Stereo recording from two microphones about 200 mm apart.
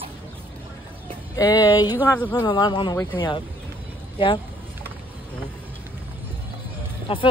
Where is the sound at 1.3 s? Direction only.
20° left (ahead or behind).